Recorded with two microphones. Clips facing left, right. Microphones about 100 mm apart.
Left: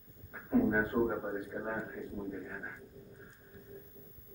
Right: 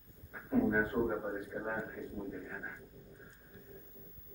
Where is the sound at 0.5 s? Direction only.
15° left (ahead or behind).